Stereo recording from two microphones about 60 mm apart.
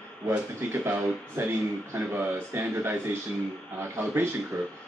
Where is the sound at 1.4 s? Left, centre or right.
Right.